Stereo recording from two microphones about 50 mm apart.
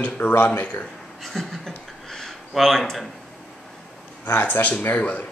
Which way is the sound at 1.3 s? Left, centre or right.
Centre.